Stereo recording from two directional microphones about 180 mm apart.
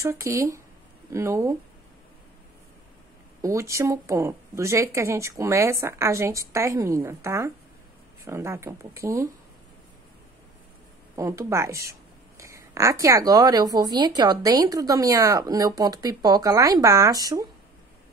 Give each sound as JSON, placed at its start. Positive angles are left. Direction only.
{"t": 0.0, "sound": "a woman's voice", "side_deg": -15}
{"t": 3.4, "sound": "a woman's voice", "side_deg": -15}
{"t": 11.1, "sound": "speech", "side_deg": -15}